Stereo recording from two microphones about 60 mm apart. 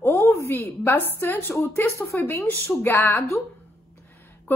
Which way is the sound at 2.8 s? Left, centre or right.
Left.